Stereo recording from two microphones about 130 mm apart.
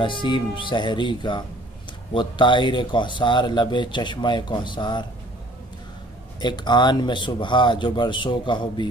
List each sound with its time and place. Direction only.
0.0 s speech: 40° left (ahead or behind)
6.4 s speech: 35° left (ahead or behind)